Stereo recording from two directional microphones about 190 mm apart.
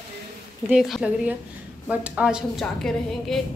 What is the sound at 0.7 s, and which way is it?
A woman's voice, centre (ahead or behind).